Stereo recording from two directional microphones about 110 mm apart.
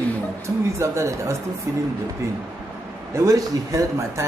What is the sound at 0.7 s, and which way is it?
Speech, 25° right (ahead or behind).